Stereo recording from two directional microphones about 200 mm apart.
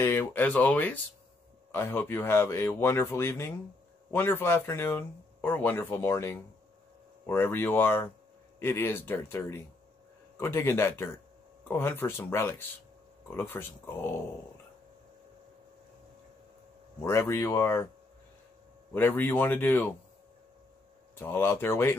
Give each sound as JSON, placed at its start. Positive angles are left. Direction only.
{"t": 0.0, "sound": "speech", "side_deg": 10}
{"t": 17.0, "sound": "speech", "side_deg": 10}
{"t": 18.9, "sound": "speech", "side_deg": 10}
{"t": 21.2, "sound": "speech", "side_deg": 10}